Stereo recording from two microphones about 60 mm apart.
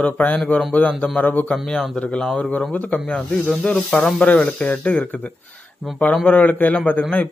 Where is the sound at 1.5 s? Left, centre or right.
Centre.